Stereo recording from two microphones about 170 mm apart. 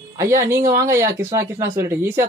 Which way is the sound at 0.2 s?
15° right (ahead or behind).